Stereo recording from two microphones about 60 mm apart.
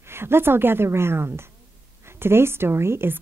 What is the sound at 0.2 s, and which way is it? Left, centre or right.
A woman's voice, right.